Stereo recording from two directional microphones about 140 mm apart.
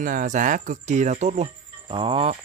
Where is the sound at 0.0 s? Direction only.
70° right (ahead or behind); by 2.3 s 40° right (ahead or behind).